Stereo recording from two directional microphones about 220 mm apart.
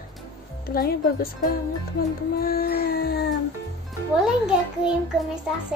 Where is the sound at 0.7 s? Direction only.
40° left (ahead or behind).